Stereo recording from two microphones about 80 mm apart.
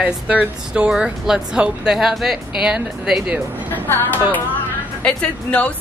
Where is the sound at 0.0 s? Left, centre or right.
Centre.